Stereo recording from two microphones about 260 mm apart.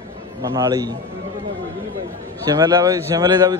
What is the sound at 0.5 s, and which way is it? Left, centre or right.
Speech, centre.